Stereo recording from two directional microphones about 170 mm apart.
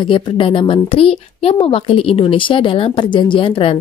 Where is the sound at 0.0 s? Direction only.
30° left (ahead or behind).